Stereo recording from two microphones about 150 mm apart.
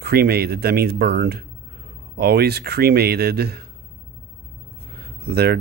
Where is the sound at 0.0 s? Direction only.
90° right.